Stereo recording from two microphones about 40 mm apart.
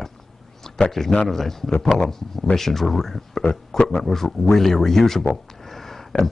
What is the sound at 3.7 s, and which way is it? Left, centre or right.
A man's voice, centre.